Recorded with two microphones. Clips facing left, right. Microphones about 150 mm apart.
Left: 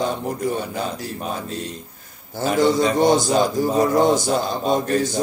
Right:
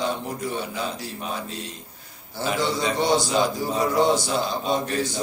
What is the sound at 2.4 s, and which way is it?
A man's voice, 45° left (ahead or behind).